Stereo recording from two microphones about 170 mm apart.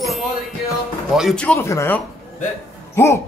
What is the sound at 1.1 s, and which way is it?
Speech, centre (ahead or behind).